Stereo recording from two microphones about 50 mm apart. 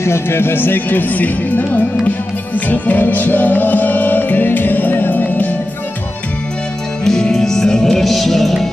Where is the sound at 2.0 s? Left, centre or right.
Left.